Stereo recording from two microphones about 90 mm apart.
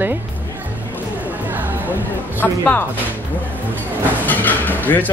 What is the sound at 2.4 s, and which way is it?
Speech, 20° left (ahead or behind).